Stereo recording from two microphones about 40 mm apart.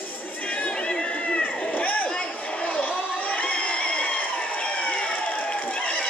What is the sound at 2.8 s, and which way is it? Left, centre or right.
Crowd, left.